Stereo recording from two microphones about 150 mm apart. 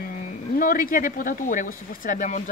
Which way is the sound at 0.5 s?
65° left (ahead or behind).